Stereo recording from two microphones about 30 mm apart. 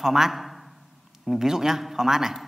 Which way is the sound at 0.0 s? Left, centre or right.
Centre.